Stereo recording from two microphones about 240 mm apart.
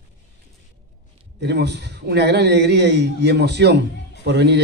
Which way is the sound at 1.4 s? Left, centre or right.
Right.